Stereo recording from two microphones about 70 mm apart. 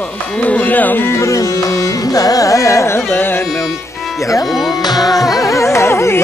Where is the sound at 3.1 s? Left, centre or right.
Left.